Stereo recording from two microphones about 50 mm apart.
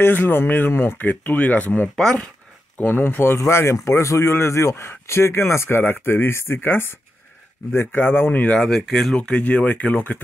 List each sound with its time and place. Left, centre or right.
0.0 s speech: left
3.3 s speech: left
8.5 s speech: centre
9.1 s speech: centre
9.4 s speech: left